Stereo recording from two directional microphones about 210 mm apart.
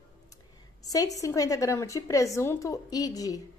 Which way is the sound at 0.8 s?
15° left (ahead or behind).